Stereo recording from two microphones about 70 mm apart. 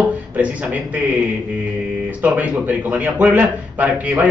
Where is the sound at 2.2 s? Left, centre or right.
Right.